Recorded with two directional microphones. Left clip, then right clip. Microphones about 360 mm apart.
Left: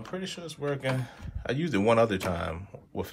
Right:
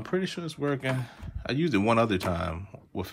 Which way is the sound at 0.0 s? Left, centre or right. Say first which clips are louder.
Right 6 dB; centre.